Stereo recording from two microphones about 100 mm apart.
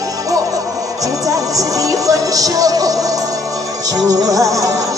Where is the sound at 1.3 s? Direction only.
35° right (ahead or behind).